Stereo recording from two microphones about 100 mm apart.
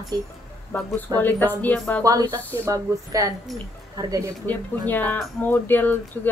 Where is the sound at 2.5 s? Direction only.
30° right (ahead or behind).